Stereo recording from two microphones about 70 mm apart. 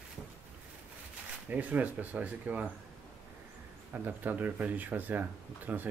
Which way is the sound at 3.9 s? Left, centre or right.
Right.